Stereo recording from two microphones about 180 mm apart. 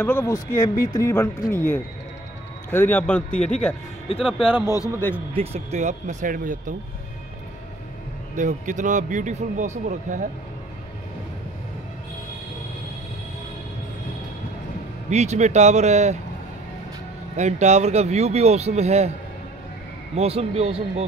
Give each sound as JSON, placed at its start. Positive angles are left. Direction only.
{"t": 0.0, "sound": "speech", "side_deg": 10}
{"t": 4.1, "sound": "speech", "side_deg": 30}
{"t": 4.6, "sound": "speech", "side_deg": 20}
{"t": 5.3, "sound": "speech", "side_deg": -35}
{"t": 8.4, "sound": "a man's voice", "side_deg": -45}
{"t": 15.0, "sound": "speech", "side_deg": -40}
{"t": 17.4, "sound": "speech", "side_deg": -40}
{"t": 20.2, "sound": "speech", "side_deg": -35}